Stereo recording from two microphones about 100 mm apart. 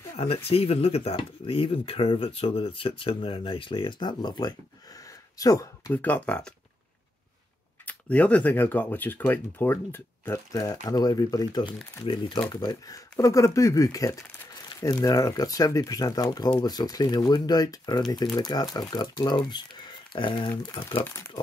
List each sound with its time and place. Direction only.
0.5 s speech: 80° left; by 5.9 s 35° left (ahead or behind)
5.9 s speech: 15° left (ahead or behind)
7.8 s speech: 15° left (ahead or behind)
10.5 s speech: 35° left (ahead or behind); by 21.0 s 55° left (ahead or behind)
21.0 s speech: 25° left (ahead or behind)